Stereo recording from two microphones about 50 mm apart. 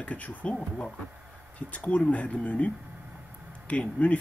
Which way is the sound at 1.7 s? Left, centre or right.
Left.